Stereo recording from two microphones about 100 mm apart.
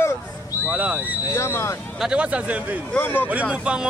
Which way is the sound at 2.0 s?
10° right (ahead or behind).